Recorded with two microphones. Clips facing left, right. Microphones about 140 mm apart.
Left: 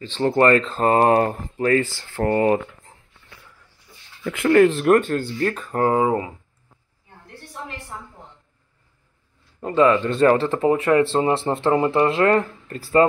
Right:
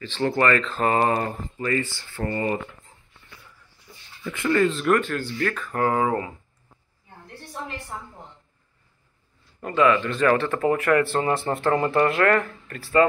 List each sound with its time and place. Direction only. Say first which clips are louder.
0.0 s speech: left 5 dB; 30° left (ahead or behind)
1.0 s speech: left 6 dB; 50° left (ahead or behind)
1.6 s speech: left 7 dB; 75° left (ahead or behind)
4.3 s speech: left 6 dB; 65° left (ahead or behind)
4.8 s speech: left 5 dB; 45° left (ahead or behind)
5.4 s speech: left 2 dB; 30° left (ahead or behind)
9.6 s speech: left 3 dB; 25° left (ahead or behind)